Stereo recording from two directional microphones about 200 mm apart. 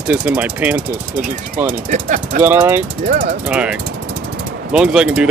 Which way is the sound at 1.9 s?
40° right (ahead or behind).